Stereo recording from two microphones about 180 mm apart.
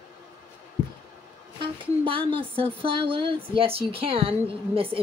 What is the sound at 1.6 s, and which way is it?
A woman's voice, 30° right (ahead or behind).